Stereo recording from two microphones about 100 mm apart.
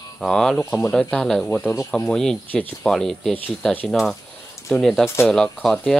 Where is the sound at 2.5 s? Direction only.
15° left (ahead or behind).